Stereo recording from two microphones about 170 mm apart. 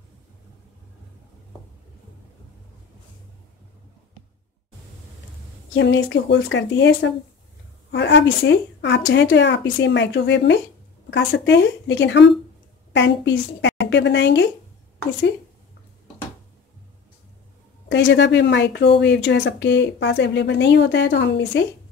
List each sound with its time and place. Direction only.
5.8 s speech: 90° left
17.8 s speech: 90° left